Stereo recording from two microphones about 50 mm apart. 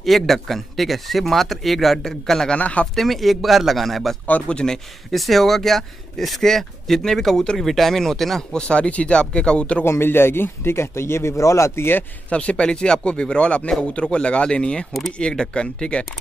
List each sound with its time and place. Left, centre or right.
0.0 s speech: centre
2.5 s speech: left
3.0 s speech: centre
4.5 s speech: centre
5.1 s speech: centre
8.5 s speech: left
9.8 s speech: left
12.3 s speech: left
14.9 s speech: centre
15.1 s speech: centre